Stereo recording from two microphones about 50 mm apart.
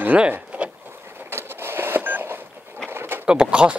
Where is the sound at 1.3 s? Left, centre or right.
Right.